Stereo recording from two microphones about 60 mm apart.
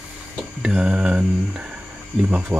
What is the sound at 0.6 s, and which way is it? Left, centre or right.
Mantra, centre.